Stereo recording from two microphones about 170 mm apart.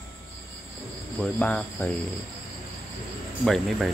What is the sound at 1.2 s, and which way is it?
Speech, 5° left (ahead or behind).